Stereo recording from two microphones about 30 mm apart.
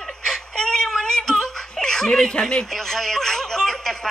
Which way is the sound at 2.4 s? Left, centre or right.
Left.